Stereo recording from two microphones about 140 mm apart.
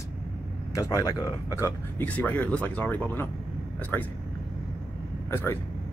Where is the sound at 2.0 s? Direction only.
10° left (ahead or behind).